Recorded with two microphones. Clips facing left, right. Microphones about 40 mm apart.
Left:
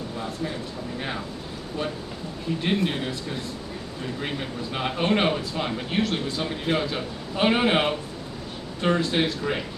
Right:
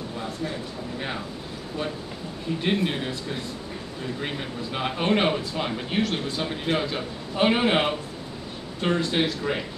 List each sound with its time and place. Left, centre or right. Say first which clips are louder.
2.6 s a man's voice: even; centre
4.7 s a man's voice: even; centre